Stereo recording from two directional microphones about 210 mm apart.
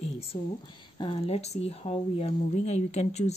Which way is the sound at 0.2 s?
25° left (ahead or behind).